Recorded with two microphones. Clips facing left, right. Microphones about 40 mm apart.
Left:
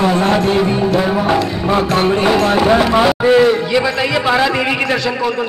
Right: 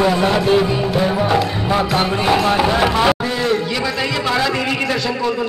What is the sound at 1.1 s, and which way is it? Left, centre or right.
Music, centre.